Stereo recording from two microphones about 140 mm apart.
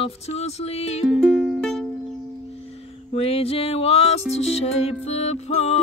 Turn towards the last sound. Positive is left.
turn(degrees=50)  # may be behind; listen again after turning